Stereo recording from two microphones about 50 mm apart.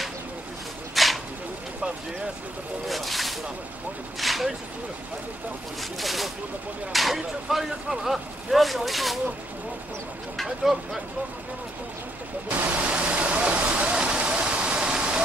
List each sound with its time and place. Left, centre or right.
0.9 s a sound: centre
2.9 s speech: centre
5.8 s speech: centre
10.3 s speech: centre
12.4 s waterfall: right